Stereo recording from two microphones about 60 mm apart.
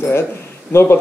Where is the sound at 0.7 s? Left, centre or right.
Left.